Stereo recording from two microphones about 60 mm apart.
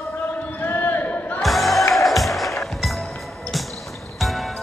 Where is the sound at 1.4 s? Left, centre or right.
Centre.